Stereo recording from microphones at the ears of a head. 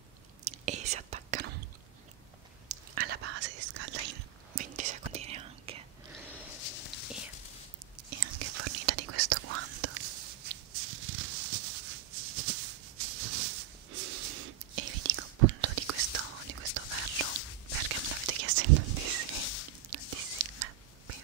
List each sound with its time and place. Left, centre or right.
0.4 s whispering: right
2.7 s whispering: right
6.5 s a sound: left
8.1 s whispering: right
17.8 s whispering: right